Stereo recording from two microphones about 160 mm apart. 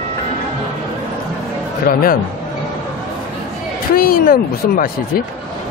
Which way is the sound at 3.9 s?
65° left (ahead or behind).